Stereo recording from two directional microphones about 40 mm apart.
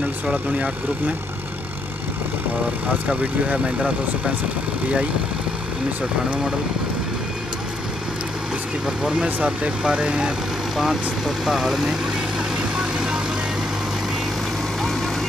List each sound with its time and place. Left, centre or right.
0.3 s speech: right
8.8 s speech: centre
9.2 s speech: right
9.8 s speech: right
10.8 s speech: centre
12.7 s vehicle: centre